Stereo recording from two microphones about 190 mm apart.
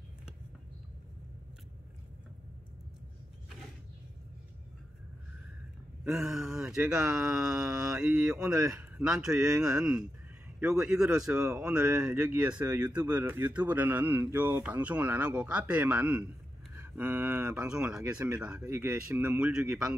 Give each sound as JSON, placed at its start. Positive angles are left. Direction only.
{"t": 6.0, "sound": "speech", "side_deg": 0}
{"t": 11.4, "sound": "speech", "side_deg": -15}